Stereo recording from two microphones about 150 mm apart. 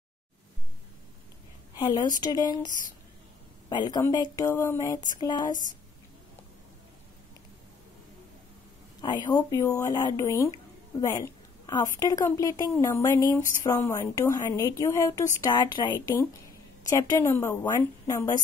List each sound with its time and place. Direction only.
1.8 s speech: 30° left (ahead or behind)
9.0 s speech: 30° left (ahead or behind)